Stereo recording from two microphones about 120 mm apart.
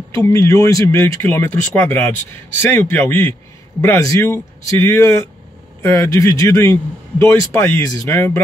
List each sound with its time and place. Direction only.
0.1 s speech: 25° left (ahead or behind)